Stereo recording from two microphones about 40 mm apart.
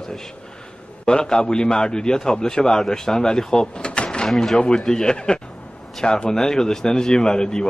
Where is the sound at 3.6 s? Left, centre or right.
Left.